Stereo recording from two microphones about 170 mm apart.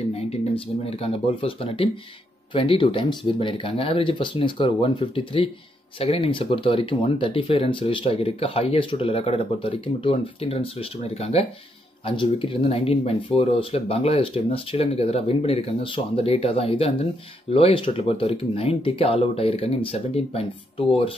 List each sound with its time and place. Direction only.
0.8 s speech: 35° left (ahead or behind)